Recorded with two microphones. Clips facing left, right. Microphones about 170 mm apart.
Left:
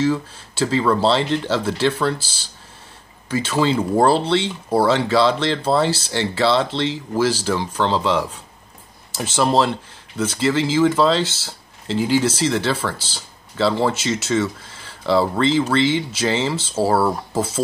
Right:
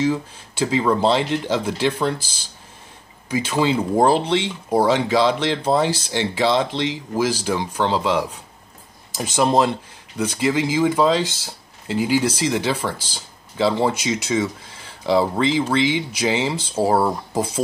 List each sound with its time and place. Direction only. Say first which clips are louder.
0.0 s speech: left 1 dB; 15° right (ahead or behind)